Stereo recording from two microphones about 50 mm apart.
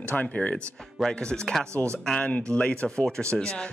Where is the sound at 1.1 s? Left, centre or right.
Centre.